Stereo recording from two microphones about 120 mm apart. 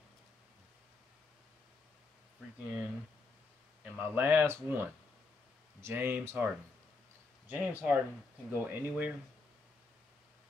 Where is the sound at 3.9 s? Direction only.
15° right (ahead or behind).